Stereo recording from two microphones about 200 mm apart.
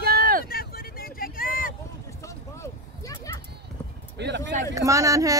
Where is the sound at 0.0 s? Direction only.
50° right (ahead or behind).